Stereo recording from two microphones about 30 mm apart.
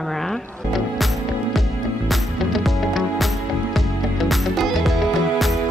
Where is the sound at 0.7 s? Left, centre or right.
Centre.